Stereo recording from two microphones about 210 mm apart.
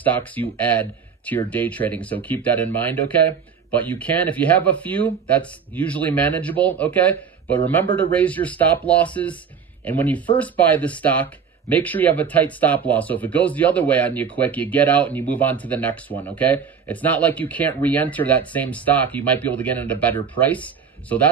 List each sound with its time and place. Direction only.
0.0 s speech: 10° left (ahead or behind)